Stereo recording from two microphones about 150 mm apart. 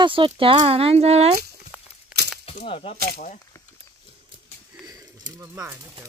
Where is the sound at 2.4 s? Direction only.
35° left (ahead or behind).